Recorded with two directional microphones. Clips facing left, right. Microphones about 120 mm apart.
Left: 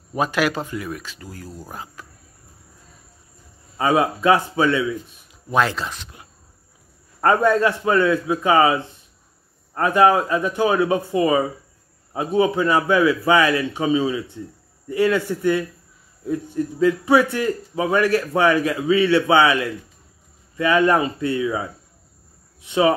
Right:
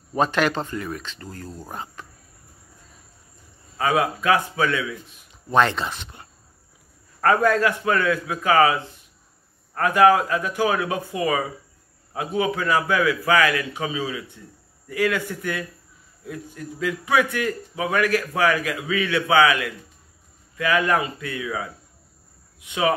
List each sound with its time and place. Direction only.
0.1 s speech: 5° left (ahead or behind)
3.7 s a man's voice: 25° left (ahead or behind)
5.3 s speech: 5° left (ahead or behind)
7.2 s a man's voice: 20° left (ahead or behind)
22.7 s a man's voice: 30° left (ahead or behind)